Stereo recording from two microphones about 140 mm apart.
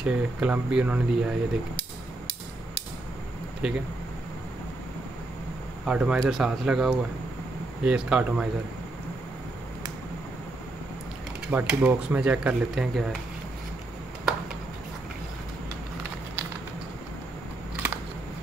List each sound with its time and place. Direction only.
0.0 s speech: 10° right (ahead or behind)
3.6 s speech: 5° right (ahead or behind)
5.9 s speech: 5° right (ahead or behind)
11.5 s speech: 10° right (ahead or behind)